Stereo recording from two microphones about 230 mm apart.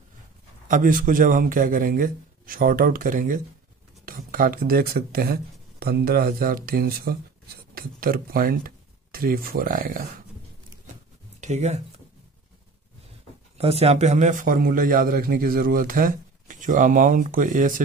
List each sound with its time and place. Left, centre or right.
0.7 s a man's voice: right
11.4 s speech: right
13.6 s a man's voice: right